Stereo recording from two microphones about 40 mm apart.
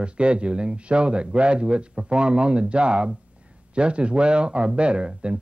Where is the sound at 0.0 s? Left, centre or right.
Right.